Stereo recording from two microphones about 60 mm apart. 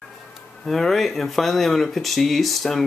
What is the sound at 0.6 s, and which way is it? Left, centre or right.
Speech, centre.